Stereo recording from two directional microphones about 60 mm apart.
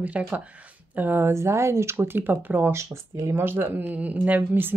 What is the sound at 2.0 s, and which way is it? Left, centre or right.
Speech, right.